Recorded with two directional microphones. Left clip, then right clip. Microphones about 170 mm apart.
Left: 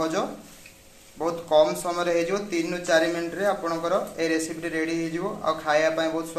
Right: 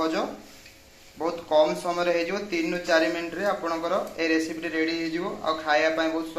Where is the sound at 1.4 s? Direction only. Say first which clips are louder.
Left 1 dB; 10° left (ahead or behind).